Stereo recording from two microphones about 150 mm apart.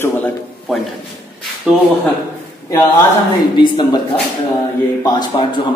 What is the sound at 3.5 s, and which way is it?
Speech, 30° left (ahead or behind).